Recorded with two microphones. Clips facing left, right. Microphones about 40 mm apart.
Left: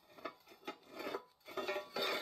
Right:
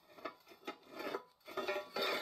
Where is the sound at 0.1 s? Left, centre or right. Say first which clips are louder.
Even; centre.